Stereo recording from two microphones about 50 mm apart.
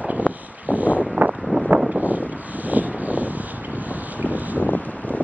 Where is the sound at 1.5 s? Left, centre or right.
Right.